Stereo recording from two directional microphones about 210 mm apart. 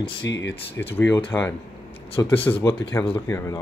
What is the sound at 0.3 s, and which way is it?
Speech, 60° left (ahead or behind).